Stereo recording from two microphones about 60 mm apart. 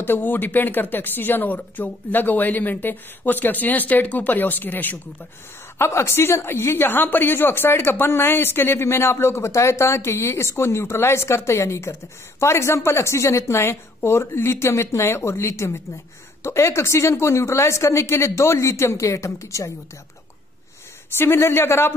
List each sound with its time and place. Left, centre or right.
0.0 s speech: left
5.8 s a woman's voice: left
21.2 s a woman's voice: left